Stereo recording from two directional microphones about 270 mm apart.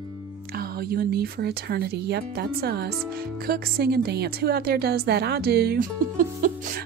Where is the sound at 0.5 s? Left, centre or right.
Right.